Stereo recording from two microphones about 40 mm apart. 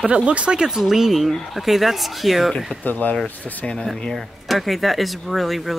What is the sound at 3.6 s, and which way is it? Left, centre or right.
Speech, left.